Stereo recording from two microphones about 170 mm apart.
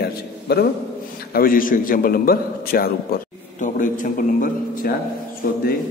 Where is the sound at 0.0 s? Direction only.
70° left (ahead or behind).